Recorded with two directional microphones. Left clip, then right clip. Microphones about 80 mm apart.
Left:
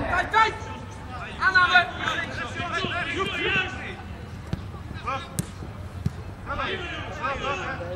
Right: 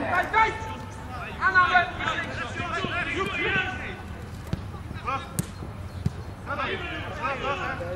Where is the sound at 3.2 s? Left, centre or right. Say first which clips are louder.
Left 2 dB; left.